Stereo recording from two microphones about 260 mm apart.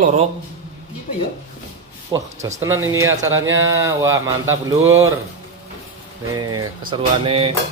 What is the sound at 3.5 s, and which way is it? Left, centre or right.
Speech, centre.